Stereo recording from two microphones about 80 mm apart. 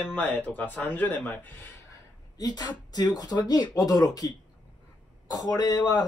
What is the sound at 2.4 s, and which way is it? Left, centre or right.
Speech, left.